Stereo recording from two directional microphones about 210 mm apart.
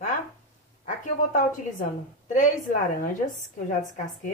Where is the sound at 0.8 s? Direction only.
40° left (ahead or behind).